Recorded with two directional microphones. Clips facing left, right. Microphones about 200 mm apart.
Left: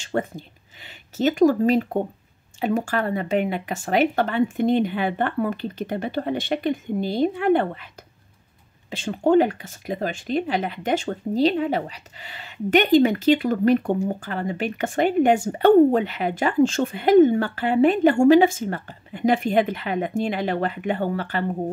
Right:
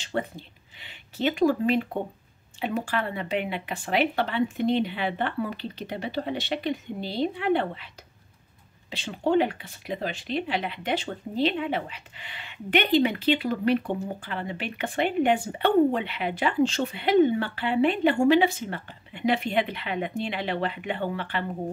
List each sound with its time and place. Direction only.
0.0 s speech: 45° left (ahead or behind)
8.9 s speech: 45° left (ahead or behind)